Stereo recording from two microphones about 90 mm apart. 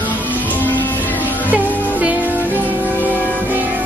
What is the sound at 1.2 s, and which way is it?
Music, 20° right (ahead or behind).